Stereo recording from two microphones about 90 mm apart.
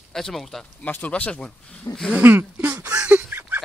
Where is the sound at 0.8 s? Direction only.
20° left (ahead or behind).